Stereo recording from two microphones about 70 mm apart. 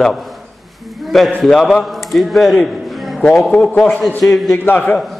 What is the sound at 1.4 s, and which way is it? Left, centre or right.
A man's voice, centre.